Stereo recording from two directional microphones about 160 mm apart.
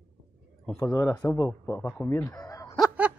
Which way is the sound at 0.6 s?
20° left (ahead or behind).